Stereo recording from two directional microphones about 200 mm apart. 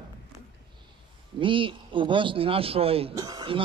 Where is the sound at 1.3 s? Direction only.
25° right (ahead or behind).